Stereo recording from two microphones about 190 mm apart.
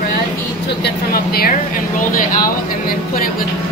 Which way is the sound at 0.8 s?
50° left (ahead or behind).